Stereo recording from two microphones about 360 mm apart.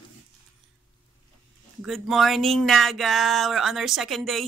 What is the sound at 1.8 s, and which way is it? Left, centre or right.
Speech, centre.